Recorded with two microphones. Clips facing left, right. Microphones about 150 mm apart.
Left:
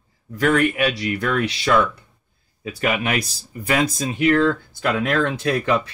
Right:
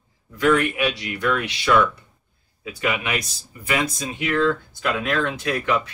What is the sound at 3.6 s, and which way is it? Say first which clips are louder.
Speech: left 4 dB; 40° left (ahead or behind).